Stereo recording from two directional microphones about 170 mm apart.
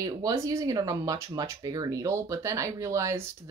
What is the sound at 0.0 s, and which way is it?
Speech, 20° right (ahead or behind).